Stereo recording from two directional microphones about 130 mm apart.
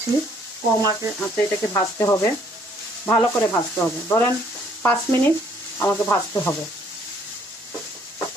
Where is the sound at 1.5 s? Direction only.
25° left (ahead or behind).